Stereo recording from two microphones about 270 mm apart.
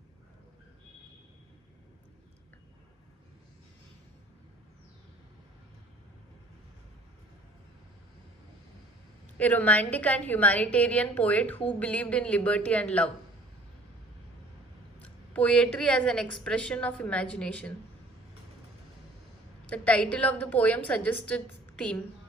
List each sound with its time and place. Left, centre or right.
9.4 s a woman's voice: centre
15.0 s a woman's voice: centre
19.7 s a woman's voice: centre